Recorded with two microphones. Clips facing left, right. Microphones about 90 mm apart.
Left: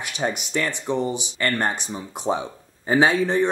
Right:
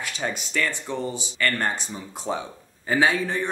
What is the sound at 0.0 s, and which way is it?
Speech, 20° left (ahead or behind).